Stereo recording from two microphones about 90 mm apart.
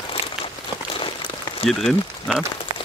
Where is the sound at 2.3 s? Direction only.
Centre (ahead or behind).